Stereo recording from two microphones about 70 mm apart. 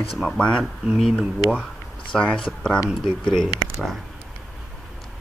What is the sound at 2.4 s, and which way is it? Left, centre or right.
Speech, centre.